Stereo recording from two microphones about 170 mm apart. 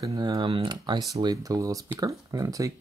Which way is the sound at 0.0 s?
20° right (ahead or behind).